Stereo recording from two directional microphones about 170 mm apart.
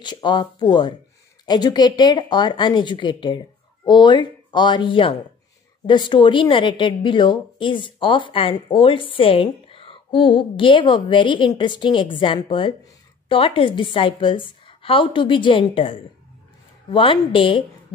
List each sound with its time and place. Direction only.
0.0 s a woman's voice: 25° left (ahead or behind)